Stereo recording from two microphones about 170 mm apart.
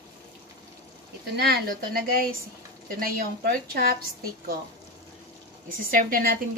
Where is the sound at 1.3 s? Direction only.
70° right (ahead or behind).